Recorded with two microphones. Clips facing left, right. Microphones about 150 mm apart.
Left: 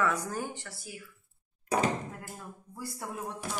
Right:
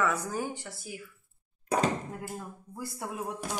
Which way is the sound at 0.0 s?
5° right (ahead or behind).